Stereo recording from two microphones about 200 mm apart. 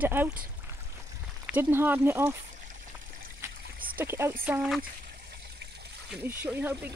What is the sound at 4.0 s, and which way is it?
Speech, 10° right (ahead or behind).